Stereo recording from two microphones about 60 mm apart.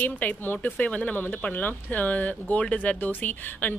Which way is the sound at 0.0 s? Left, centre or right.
Left.